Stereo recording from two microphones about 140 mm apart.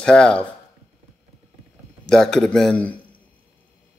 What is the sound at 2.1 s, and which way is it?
Speech, 5° left (ahead or behind).